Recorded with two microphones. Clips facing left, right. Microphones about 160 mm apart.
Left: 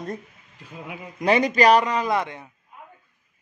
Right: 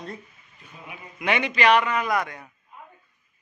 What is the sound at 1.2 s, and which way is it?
A man's voice, 40° left (ahead or behind).